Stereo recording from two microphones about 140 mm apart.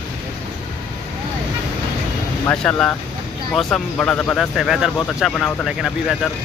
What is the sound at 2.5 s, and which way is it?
Speech, 10° left (ahead or behind).